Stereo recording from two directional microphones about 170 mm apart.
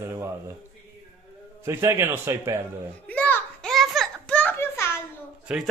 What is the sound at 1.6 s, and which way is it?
A man's voice, 15° right (ahead or behind).